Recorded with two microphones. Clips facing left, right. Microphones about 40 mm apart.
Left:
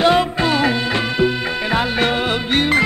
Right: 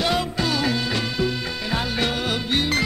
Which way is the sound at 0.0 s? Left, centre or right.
Left.